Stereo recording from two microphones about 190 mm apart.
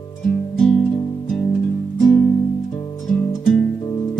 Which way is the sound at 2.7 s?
20° left (ahead or behind).